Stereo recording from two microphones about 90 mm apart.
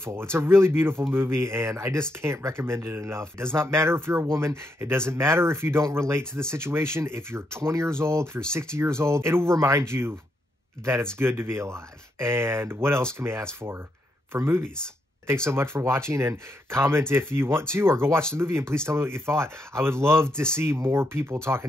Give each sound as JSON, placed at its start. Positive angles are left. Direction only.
{"t": 0.0, "sound": "speech", "side_deg": -30}
{"t": 11.1, "sound": "speech", "side_deg": -25}